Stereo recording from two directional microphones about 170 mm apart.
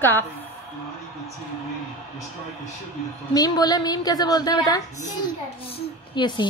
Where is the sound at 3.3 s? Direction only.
25° left (ahead or behind).